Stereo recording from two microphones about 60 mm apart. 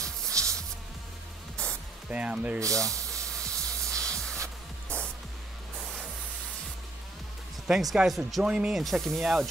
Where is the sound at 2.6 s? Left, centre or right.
Right.